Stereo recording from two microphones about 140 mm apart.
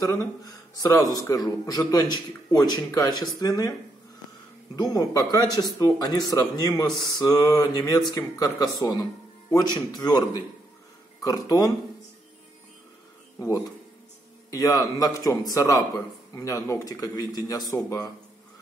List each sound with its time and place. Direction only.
0.0 s speech: 25° left (ahead or behind)
4.7 s speech: 25° left (ahead or behind)
13.4 s speech: 25° left (ahead or behind)